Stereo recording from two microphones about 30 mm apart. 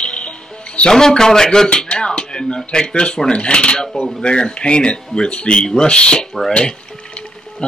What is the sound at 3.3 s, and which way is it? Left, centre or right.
Speech, left.